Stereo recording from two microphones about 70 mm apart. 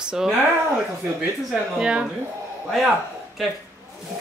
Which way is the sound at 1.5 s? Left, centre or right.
Centre.